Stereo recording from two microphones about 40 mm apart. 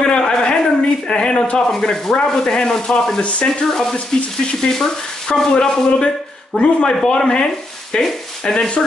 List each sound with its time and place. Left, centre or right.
0.0 s a sound: left
1.7 s speech: centre
3.2 s frying: left
3.4 s sizzle: centre
4.6 s speech: centre